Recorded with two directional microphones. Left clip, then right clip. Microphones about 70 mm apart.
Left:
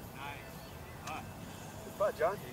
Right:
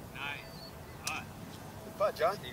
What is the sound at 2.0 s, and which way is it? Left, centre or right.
Speech, right.